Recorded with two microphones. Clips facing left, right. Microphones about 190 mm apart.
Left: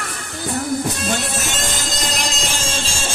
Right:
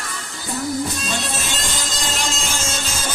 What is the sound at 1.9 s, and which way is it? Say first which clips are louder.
Music: left 1 dB; 35° left (ahead or behind).